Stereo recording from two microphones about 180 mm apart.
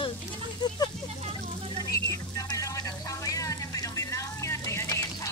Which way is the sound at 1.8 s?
20° left (ahead or behind).